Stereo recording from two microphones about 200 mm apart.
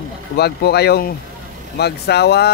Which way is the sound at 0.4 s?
55° left (ahead or behind).